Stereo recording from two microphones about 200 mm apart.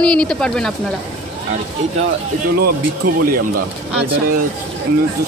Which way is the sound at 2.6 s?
45° right (ahead or behind).